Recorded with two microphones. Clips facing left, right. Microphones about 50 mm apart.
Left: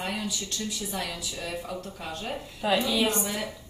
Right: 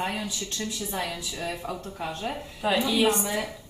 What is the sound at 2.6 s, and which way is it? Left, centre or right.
Speech, centre.